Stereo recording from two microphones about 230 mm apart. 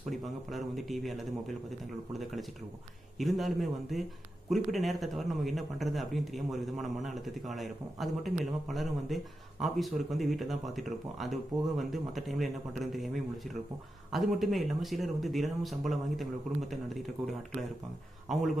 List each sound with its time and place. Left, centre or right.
0.0 s speech: centre
3.2 s speech: centre